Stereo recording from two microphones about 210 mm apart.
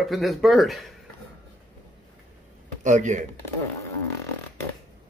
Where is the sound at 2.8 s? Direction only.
35° right (ahead or behind).